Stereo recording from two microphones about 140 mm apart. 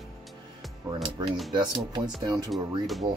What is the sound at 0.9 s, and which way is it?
Speech, 35° right (ahead or behind).